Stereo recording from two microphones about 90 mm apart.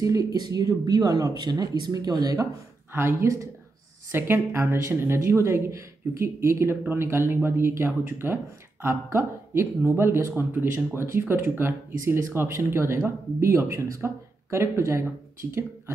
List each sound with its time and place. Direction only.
0.0 s speech: 40° right (ahead or behind)
2.9 s speech: 30° right (ahead or behind)